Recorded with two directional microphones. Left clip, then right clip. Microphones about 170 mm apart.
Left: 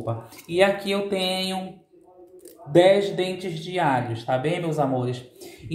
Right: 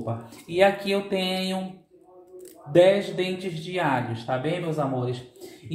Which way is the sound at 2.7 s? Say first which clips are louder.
Left 1 dB; 10° left (ahead or behind).